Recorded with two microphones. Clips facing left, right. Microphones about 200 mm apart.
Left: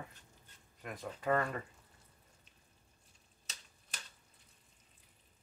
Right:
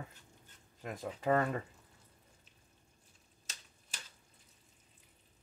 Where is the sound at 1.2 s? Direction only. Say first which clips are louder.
Right 2 dB; 25° right (ahead or behind).